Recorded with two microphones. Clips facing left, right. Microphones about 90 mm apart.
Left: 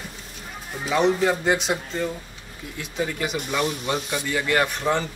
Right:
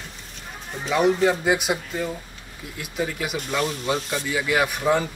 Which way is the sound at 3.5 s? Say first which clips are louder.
Right 2 dB; 10° left (ahead or behind).